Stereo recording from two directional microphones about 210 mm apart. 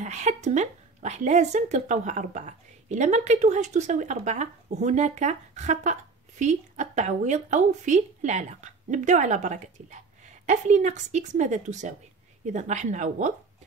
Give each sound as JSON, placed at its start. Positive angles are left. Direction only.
{"t": 0.0, "sound": "speech", "side_deg": -35}